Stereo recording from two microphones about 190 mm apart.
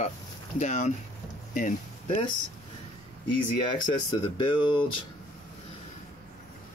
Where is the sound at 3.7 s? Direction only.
25° left (ahead or behind).